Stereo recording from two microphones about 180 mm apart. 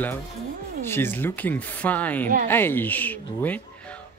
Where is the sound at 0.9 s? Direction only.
10° left (ahead or behind).